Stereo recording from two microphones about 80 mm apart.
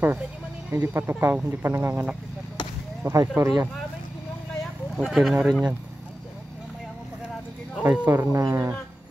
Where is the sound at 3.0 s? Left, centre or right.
Right.